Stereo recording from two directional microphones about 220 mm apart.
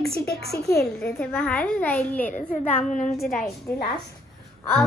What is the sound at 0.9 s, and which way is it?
A child's voice, 10° left (ahead or behind).